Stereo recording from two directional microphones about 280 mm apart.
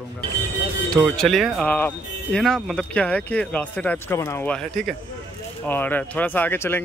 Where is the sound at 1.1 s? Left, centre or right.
Centre.